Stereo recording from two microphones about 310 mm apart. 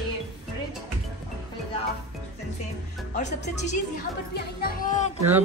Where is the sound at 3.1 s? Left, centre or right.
Left.